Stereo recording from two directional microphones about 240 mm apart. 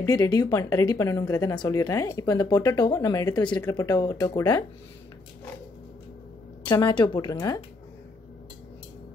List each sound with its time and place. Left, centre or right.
0.0 s speech: centre
6.6 s speech: centre